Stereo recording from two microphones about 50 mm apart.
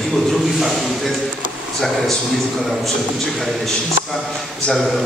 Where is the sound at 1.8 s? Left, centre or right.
Centre.